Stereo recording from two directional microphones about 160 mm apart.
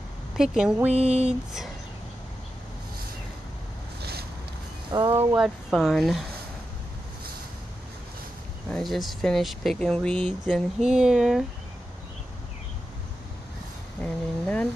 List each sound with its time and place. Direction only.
0.4 s speech: 5° right (ahead or behind)
4.0 s boat: 80° right
4.9 s speech: 20° right (ahead or behind)
5.4 s speech: centre (ahead or behind)
8.6 s speech: centre (ahead or behind)
14.0 s speech: 5° left (ahead or behind)